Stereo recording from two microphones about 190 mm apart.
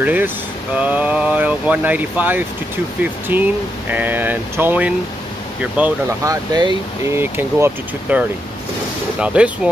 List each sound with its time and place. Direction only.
0.0 s speech: 10° right (ahead or behind)
6.2 s speech: 20° right (ahead or behind)